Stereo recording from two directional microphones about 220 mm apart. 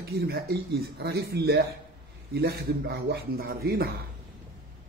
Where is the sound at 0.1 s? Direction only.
45° right (ahead or behind).